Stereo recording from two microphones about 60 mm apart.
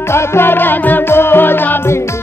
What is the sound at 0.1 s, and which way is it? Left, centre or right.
Music, left.